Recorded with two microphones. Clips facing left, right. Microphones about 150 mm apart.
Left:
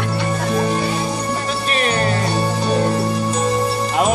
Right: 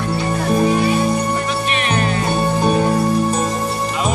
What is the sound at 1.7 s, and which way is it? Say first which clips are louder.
Music: left 3 dB; 40° left (ahead or behind).